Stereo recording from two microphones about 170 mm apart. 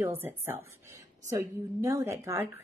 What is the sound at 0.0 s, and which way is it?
A woman's voice, 15° right (ahead or behind).